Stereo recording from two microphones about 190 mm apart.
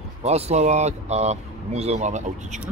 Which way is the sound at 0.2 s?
35° right (ahead or behind).